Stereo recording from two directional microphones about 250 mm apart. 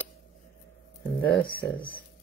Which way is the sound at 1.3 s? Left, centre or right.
Left.